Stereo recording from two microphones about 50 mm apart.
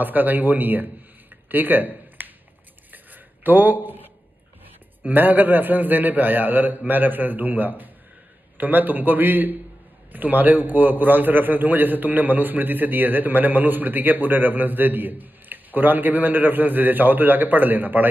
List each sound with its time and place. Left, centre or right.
0.0 s a man's voice: right
1.5 s a sound: right
5.0 s a man's voice: right